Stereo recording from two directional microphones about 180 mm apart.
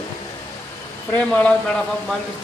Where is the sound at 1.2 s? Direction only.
5° left (ahead or behind).